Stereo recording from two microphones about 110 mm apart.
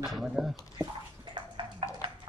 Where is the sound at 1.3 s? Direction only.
50° right (ahead or behind).